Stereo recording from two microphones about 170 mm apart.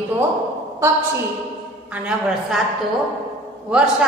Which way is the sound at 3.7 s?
5° right (ahead or behind).